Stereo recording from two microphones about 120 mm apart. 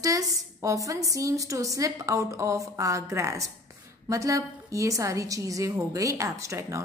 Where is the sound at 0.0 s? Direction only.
30° right (ahead or behind).